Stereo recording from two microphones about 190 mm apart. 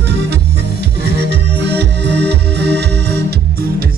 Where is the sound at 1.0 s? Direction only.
60° right (ahead or behind).